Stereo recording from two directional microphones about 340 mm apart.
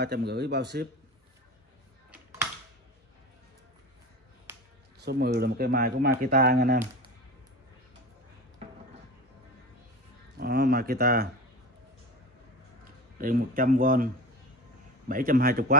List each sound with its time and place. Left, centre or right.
0.0 s speech: right
4.5 s finger snapping: centre
5.0 s speech: right
10.3 s speech: right
13.2 s speech: right